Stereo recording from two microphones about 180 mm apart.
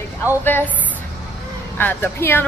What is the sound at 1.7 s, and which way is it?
Speech, 10° left (ahead or behind).